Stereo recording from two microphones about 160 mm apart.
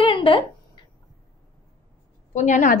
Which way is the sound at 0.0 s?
35° left (ahead or behind).